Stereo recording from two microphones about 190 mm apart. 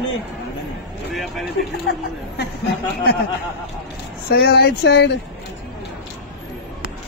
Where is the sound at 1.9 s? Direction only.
55° left (ahead or behind).